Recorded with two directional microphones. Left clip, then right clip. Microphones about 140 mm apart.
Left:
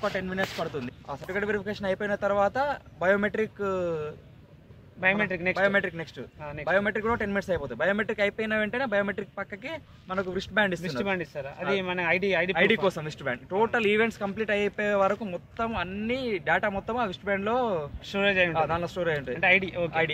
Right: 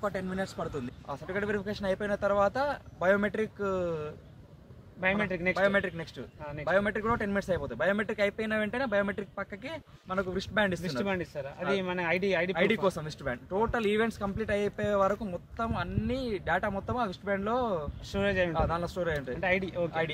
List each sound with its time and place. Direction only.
0.0 s speech: 5° left (ahead or behind)
5.0 s speech: 30° right (ahead or behind)
5.6 s speech: centre (ahead or behind)
11.0 s speech: 30° right (ahead or behind)
12.5 s speech: centre (ahead or behind)
18.1 s speech: 30° right (ahead or behind)
18.5 s speech: centre (ahead or behind)
19.4 s speech: 30° right (ahead or behind)